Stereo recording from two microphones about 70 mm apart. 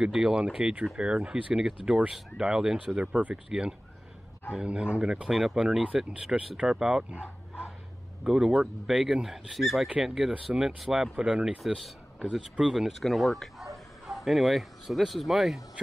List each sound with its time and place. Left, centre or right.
0.0 s speech: centre
7.1 s bow-wow: centre
8.2 s speech: centre
11.1 s speech: centre
11.4 s speech: centre